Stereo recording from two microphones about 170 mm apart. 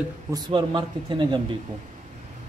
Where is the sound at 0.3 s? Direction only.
25° right (ahead or behind).